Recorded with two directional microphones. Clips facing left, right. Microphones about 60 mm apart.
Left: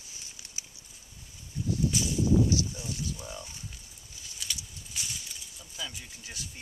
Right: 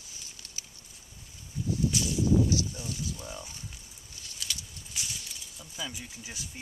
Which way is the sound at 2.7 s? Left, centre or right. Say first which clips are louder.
Even; centre.